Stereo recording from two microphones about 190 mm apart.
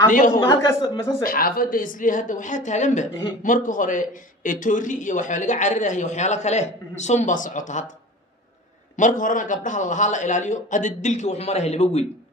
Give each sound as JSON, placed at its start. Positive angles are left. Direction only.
{"t": 0.4, "sound": "speech", "side_deg": 15}
{"t": 1.2, "sound": "a man's voice", "side_deg": 50}
{"t": 8.9, "sound": "a man's voice", "side_deg": 40}